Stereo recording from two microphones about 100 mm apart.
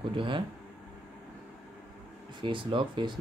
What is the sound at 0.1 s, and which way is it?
Speech, 60° right (ahead or behind).